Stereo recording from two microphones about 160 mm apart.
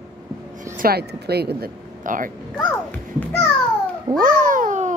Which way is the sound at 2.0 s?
55° right (ahead or behind).